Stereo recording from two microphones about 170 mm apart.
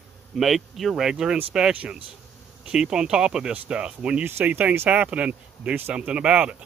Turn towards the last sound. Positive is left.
turn(degrees=-5)  # may be behind; listen again after turning